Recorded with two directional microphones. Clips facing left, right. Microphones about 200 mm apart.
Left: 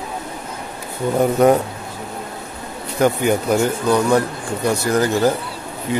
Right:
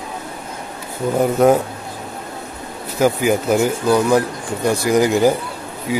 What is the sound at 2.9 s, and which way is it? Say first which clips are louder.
Speech: right 1 dB; 5° right (ahead or behind).